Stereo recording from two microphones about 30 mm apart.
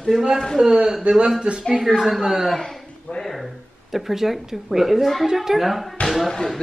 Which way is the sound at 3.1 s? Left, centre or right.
Left.